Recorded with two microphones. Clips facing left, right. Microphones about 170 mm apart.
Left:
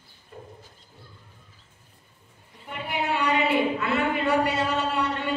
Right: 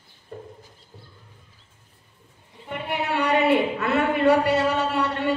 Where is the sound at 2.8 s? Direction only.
65° right (ahead or behind).